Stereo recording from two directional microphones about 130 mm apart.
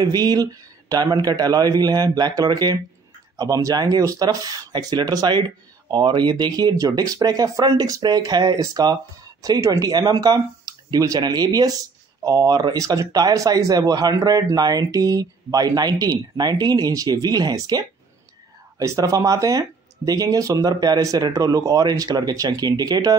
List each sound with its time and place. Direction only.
0.0 s speech: 30° right (ahead or behind)